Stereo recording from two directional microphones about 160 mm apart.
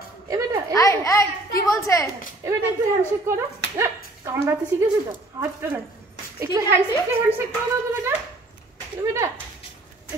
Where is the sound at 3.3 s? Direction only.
15° right (ahead or behind).